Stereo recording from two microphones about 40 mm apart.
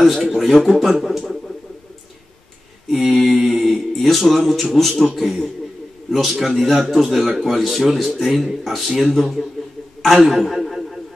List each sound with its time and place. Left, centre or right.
0.0 s speech: centre
2.9 s speech: centre
3.3 s music: centre
3.6 s a man's voice: centre
10.2 s a sound: centre